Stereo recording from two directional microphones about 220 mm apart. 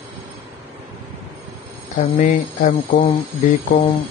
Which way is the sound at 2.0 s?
35° left (ahead or behind).